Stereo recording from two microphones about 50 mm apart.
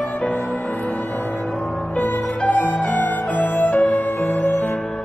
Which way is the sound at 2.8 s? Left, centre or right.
Left.